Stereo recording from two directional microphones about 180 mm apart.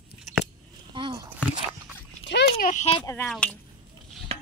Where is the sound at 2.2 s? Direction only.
70° left (ahead or behind).